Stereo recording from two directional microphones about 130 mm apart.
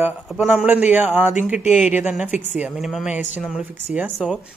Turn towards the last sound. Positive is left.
turn(degrees=-10)  # may be behind; listen again after turning